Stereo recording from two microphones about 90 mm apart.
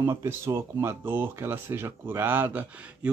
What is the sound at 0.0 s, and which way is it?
Speech, 30° right (ahead or behind).